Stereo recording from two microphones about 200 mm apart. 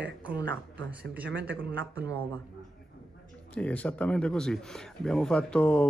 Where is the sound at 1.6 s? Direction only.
20° left (ahead or behind).